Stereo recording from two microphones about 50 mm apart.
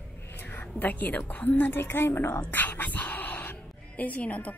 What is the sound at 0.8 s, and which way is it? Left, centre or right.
A woman's voice, left.